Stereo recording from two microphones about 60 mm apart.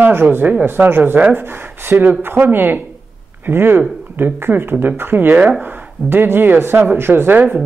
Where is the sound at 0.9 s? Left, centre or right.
Right.